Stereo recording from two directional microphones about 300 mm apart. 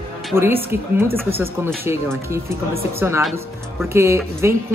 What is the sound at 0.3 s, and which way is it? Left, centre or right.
Speech, centre.